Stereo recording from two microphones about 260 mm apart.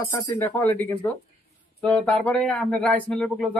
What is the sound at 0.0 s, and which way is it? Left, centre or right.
Speech, centre.